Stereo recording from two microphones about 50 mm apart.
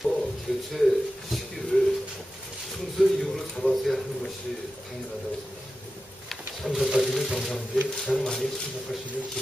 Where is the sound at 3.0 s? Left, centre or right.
Centre.